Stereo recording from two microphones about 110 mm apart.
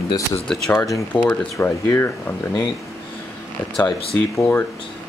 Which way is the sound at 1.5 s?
25° left (ahead or behind).